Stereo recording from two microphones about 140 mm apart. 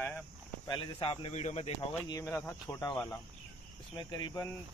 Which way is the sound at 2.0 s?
25° left (ahead or behind).